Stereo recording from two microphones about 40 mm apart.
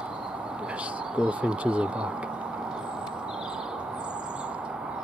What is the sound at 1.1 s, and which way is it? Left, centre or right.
Speech, right.